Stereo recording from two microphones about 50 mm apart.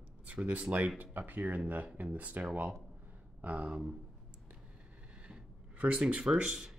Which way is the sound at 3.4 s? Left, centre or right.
Right.